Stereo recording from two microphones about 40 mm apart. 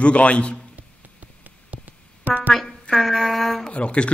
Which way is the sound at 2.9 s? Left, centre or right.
Centre.